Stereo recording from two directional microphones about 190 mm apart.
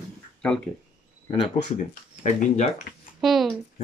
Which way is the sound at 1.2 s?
30° left (ahead or behind).